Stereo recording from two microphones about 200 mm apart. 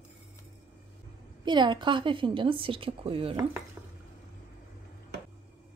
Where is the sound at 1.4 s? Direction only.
20° right (ahead or behind).